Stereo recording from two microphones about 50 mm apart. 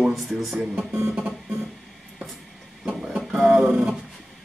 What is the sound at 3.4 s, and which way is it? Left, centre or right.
Music, right.